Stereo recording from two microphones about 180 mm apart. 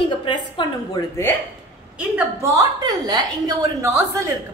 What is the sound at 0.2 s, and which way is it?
Speech, 25° left (ahead or behind).